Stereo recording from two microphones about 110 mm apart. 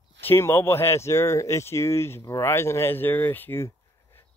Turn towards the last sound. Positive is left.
turn(degrees=25)  # may be behind; listen again after turning